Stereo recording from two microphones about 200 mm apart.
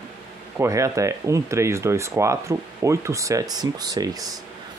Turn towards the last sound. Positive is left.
turn(degrees=-20)  # may be behind; listen again after turning